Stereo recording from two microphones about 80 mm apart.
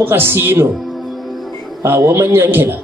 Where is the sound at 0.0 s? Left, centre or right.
Right.